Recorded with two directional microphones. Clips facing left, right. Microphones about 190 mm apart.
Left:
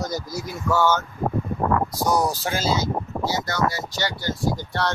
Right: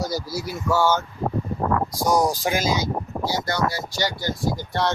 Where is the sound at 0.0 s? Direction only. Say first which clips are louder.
Right 1 dB; 10° right (ahead or behind).